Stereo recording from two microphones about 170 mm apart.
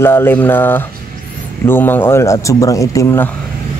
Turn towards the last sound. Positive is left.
turn(degrees=15)  # may be behind; listen again after turning